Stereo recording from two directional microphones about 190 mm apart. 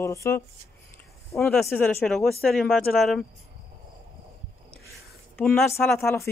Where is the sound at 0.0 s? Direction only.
15° left (ahead or behind).